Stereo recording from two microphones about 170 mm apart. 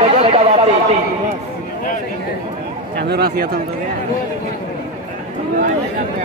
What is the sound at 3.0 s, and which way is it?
Speech, 70° right (ahead or behind).